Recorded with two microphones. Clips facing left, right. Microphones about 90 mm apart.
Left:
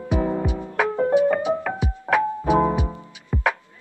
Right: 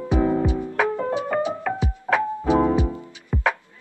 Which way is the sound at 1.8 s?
15° left (ahead or behind).